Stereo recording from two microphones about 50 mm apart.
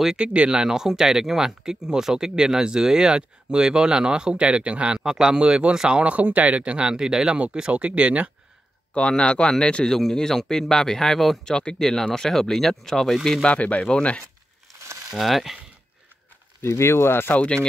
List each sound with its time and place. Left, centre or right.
0.2 s speech: right
7.7 s speech: right
8.9 s speech: left; by 13.4 s centre
13.4 s speech: left
15.0 s speech: centre
16.6 s speech: left